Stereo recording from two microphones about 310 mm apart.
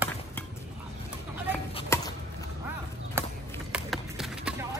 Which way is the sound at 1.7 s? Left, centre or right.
Centre.